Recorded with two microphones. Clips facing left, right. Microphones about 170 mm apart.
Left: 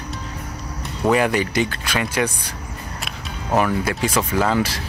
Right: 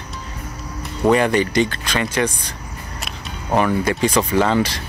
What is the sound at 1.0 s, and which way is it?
Speech, 5° left (ahead or behind).